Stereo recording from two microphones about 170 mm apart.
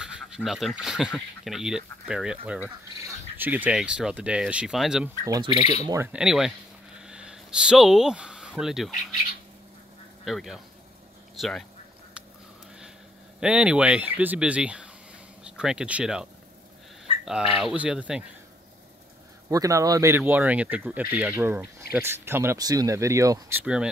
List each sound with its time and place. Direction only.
0.0 s speech: 5° right (ahead or behind)
5.2 s speech: 25° right (ahead or behind)
6.1 s speech: 5° right (ahead or behind)
7.0 s a sound: 5° right (ahead or behind)
10.2 s speech: centre (ahead or behind)
13.4 s speech: 5° right (ahead or behind)
17.0 s a sound: centre (ahead or behind)
17.6 s speech: 5° right (ahead or behind)
19.5 s speech: 20° right (ahead or behind)
23.6 s speech: 5° right (ahead or behind)